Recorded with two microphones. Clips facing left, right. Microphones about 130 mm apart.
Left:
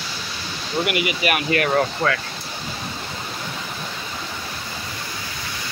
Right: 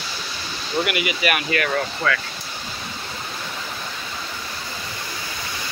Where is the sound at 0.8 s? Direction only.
30° left (ahead or behind).